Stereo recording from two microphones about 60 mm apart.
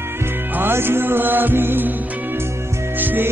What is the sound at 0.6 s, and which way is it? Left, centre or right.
Music, right.